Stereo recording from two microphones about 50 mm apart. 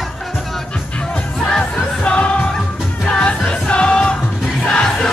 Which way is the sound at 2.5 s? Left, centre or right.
Centre.